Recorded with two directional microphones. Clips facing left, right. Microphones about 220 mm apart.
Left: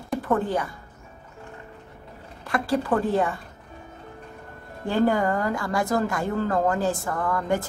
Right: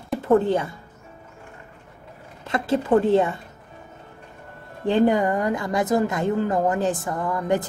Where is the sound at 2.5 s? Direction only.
20° right (ahead or behind).